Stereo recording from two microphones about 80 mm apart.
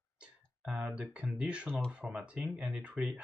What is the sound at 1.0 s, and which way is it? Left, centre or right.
Speech, centre.